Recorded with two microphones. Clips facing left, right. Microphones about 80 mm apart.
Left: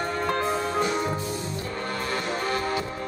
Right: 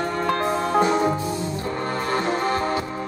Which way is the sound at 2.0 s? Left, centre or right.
Right.